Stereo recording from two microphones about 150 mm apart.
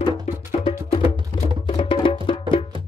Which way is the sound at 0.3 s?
45° left (ahead or behind).